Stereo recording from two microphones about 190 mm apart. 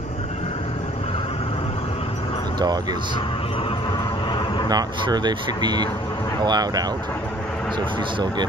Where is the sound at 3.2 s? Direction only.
30° left (ahead or behind).